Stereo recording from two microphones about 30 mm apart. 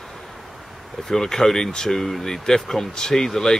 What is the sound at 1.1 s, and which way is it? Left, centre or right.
Speech, centre.